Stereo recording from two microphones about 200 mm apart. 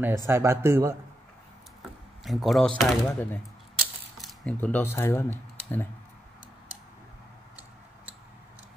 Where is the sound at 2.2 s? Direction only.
Centre (ahead or behind).